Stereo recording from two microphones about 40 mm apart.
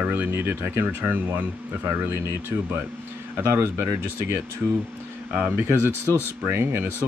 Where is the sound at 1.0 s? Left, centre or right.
Right.